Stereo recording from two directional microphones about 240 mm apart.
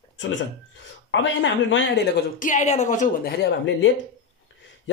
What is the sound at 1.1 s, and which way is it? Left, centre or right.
A woman's voice, left.